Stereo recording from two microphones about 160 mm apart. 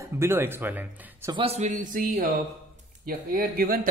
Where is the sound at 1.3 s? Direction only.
35° right (ahead or behind).